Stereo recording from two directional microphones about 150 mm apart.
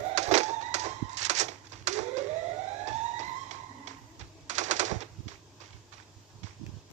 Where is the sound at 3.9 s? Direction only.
50° right (ahead or behind).